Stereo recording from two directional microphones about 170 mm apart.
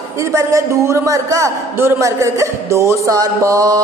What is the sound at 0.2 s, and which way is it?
A man's voice, 15° right (ahead or behind).